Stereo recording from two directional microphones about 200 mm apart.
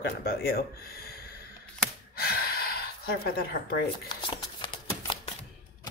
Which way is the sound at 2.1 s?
50° left (ahead or behind).